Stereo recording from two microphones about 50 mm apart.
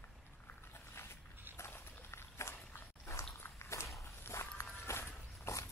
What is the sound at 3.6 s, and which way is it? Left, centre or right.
Walk, left.